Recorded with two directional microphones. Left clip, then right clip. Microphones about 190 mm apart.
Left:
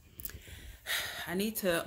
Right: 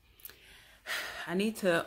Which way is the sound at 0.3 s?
Centre (ahead or behind).